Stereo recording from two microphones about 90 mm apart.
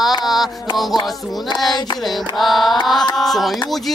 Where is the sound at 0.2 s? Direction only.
Centre (ahead or behind).